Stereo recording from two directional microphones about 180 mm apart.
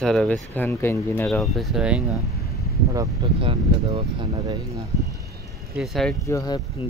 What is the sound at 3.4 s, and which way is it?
Speech, 30° right (ahead or behind).